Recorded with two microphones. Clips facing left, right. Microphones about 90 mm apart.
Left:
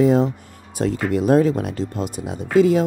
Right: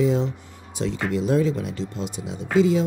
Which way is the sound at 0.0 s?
50° left (ahead or behind).